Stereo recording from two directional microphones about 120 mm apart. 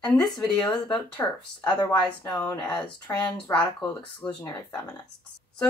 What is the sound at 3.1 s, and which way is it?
Speech, 25° left (ahead or behind).